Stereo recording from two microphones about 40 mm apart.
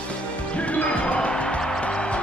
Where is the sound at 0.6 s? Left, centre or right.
Left.